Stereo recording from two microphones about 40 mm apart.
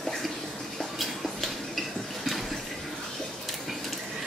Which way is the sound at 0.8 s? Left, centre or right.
Centre.